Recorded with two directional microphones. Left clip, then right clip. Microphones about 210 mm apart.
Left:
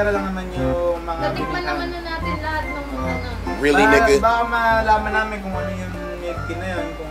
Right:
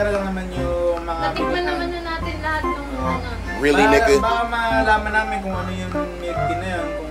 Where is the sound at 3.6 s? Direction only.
Centre (ahead or behind).